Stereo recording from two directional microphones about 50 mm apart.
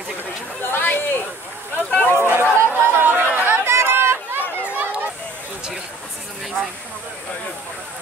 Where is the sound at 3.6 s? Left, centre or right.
Right.